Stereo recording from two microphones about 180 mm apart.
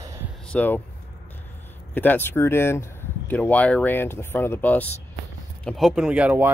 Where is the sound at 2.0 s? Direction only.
10° left (ahead or behind).